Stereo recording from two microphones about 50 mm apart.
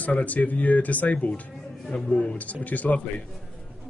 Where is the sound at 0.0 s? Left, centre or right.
Left.